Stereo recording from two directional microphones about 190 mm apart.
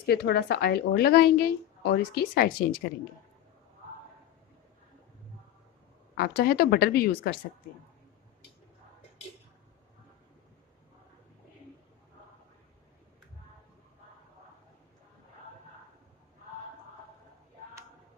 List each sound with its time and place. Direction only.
0.0 s a woman's voice: 60° left (ahead or behind)
6.1 s a woman's voice: 55° left (ahead or behind)